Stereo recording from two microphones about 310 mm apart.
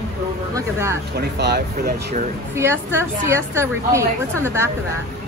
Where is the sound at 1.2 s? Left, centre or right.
Right.